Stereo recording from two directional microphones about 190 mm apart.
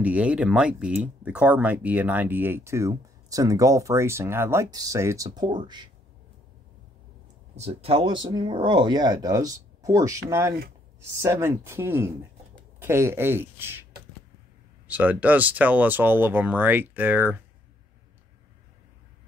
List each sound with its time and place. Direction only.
0.0 s speech: 5° right (ahead or behind); by 5.9 s 25° right (ahead or behind)
7.5 s speech: 35° right (ahead or behind); by 13.8 s 10° right (ahead or behind)
14.9 s speech: 10° right (ahead or behind)